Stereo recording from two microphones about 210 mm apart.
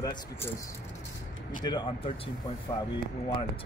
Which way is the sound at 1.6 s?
25° left (ahead or behind).